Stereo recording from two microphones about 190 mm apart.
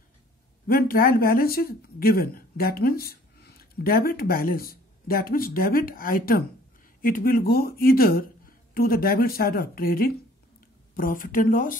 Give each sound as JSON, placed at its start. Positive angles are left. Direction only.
{"t": 0.7, "sound": "speech", "side_deg": 50}